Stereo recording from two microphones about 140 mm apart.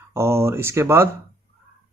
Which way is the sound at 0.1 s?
20° right (ahead or behind).